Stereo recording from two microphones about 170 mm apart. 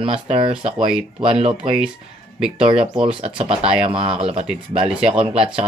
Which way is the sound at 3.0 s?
30° right (ahead or behind).